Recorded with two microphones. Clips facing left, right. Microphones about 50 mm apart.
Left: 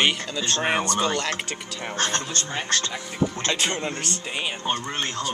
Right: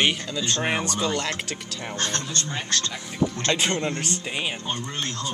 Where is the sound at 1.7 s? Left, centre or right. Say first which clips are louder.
Left 4 dB; centre.